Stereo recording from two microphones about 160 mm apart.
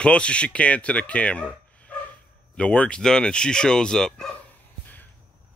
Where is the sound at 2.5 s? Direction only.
5° left (ahead or behind).